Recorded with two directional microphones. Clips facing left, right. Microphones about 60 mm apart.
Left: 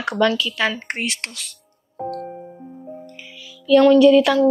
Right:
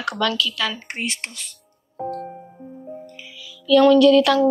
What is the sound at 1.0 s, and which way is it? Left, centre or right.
Speech, left.